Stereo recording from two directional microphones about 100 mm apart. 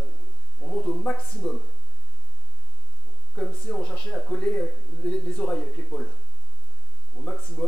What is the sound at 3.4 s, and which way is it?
Speech, 10° left (ahead or behind).